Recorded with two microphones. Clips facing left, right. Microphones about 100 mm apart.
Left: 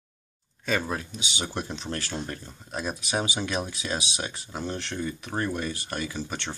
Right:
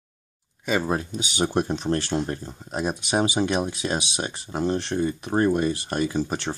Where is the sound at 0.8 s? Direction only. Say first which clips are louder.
Right 6 dB; 35° right (ahead or behind).